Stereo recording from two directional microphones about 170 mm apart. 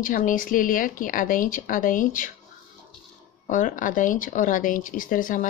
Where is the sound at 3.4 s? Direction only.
50° left (ahead or behind).